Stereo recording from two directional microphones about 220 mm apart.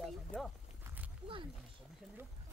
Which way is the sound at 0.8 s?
5° right (ahead or behind).